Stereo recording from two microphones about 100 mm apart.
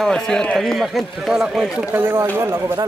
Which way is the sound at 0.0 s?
5° left (ahead or behind).